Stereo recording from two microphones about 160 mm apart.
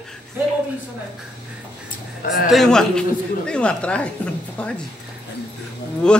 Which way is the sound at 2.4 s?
Centre (ahead or behind).